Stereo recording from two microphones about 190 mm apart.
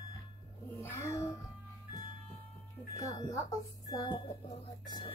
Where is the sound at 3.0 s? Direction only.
15° left (ahead or behind).